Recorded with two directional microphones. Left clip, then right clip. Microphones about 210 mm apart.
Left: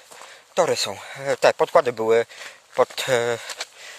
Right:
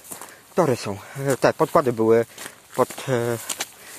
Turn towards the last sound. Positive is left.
turn(degrees=45)  # may be behind; listen again after turning